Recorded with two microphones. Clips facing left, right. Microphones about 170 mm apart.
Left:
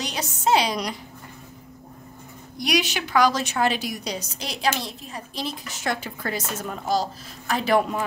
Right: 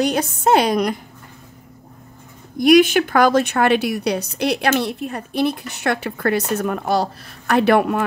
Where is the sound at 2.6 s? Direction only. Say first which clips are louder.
Right 13 dB; 50° right (ahead or behind).